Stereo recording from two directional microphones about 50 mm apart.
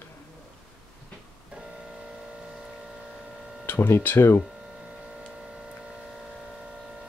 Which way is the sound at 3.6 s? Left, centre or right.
Left.